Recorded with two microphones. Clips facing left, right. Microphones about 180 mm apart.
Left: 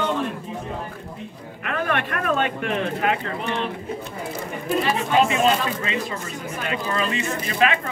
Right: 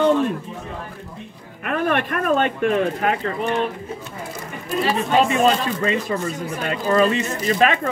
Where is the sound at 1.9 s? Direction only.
45° right (ahead or behind).